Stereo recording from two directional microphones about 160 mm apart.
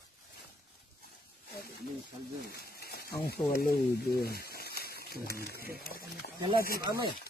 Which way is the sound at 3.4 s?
75° left (ahead or behind).